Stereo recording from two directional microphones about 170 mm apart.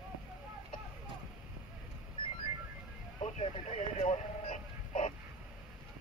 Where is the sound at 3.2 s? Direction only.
40° left (ahead or behind).